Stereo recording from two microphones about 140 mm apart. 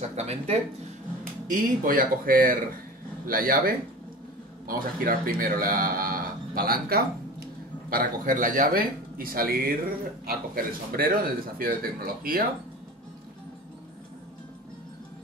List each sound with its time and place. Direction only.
0.1 s speech: 50° right (ahead or behind)
1.5 s speech: 80° right
7.9 s speech: 70° right (ahead or behind); by 12.4 s 90° right